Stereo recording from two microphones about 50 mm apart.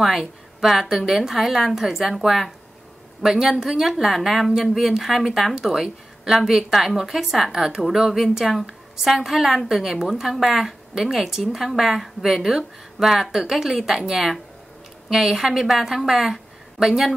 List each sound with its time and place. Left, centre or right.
0.1 s a woman's voice: centre